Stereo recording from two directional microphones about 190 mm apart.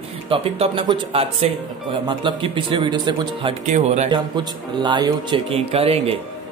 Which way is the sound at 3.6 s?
35° right (ahead or behind).